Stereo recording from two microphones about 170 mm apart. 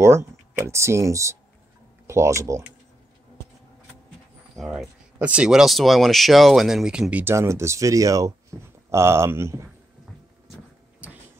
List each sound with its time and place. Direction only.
0.0 s speech: 15° right (ahead or behind)
4.6 s speech: 5° right (ahead or behind)
11.0 s a sound: 10° right (ahead or behind)